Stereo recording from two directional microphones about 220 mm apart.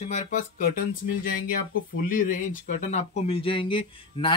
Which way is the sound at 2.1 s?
35° left (ahead or behind).